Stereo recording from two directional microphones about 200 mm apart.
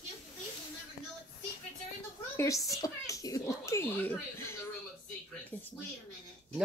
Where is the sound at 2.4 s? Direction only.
15° left (ahead or behind).